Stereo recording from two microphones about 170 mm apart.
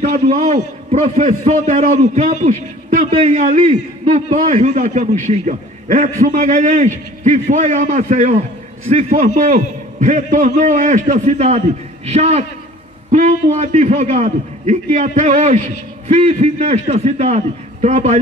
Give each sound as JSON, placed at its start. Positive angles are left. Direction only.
{"t": 0.0, "sound": "a man's voice", "side_deg": -45}